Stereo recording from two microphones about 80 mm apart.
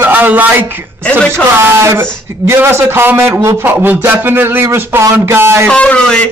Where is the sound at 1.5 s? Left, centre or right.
Right.